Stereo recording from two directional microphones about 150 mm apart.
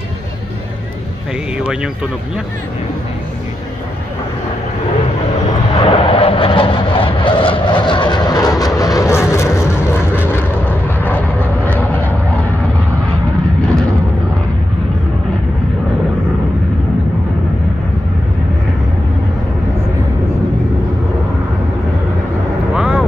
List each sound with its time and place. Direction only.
5.8 s vehicle: 35° left (ahead or behind); by 9.5 s 20° left (ahead or behind)
11.1 s vehicle: 10° left (ahead or behind)
22.8 s vehicle: 5° right (ahead or behind)